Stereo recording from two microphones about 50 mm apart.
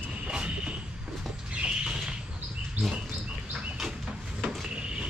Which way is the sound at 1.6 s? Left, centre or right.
Centre.